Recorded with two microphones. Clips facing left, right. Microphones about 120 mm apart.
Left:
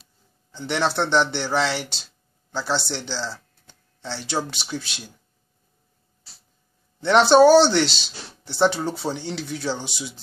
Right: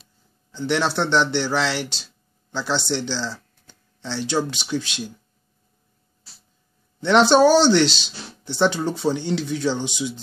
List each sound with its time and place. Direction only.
0.5 s speech: 15° left (ahead or behind)
7.0 s speech: 10° left (ahead or behind)